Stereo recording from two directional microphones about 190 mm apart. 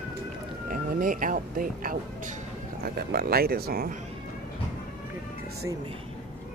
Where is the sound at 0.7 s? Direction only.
45° right (ahead or behind).